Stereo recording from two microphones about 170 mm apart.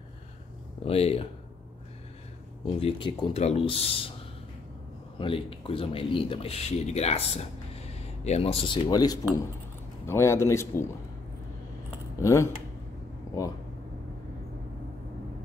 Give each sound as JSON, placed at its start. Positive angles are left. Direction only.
{"t": 0.8, "sound": "speech", "side_deg": 35}
{"t": 2.6, "sound": "speech", "side_deg": 30}
{"t": 5.2, "sound": "a man's voice", "side_deg": 30}
{"t": 12.2, "sound": "a man's voice", "side_deg": 15}